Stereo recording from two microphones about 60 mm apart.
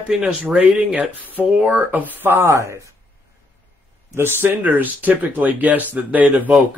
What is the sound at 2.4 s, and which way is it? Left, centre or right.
Speech, right.